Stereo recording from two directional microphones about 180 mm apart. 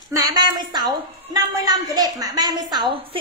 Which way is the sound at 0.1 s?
20° right (ahead or behind).